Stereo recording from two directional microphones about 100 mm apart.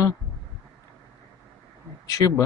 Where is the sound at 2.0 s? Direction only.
35° left (ahead or behind).